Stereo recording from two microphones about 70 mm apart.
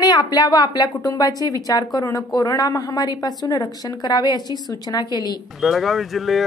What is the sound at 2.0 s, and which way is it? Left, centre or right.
A woman's voice, left.